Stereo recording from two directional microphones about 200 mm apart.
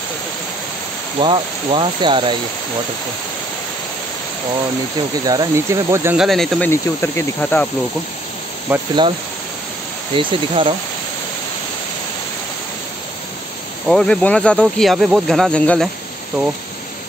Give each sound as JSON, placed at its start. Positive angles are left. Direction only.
{"t": 1.2, "sound": "speech", "side_deg": -25}
{"t": 5.2, "sound": "speech", "side_deg": -20}
{"t": 6.1, "sound": "speech", "side_deg": 0}
{"t": 6.7, "sound": "speech", "side_deg": 10}
{"t": 8.7, "sound": "speech", "side_deg": -10}
{"t": 10.1, "sound": "speech", "side_deg": -25}
{"t": 13.8, "sound": "speech", "side_deg": 5}